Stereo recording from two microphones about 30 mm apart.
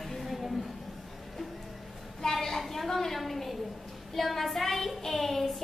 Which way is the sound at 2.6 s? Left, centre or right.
Centre.